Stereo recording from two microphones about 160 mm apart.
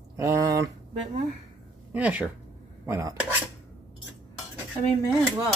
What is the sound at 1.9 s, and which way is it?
Speech, 10° right (ahead or behind).